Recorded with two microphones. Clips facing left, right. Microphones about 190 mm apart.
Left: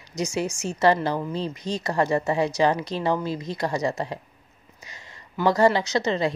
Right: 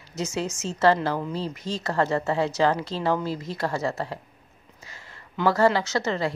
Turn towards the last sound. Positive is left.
turn(degrees=20)  # may be behind; listen again after turning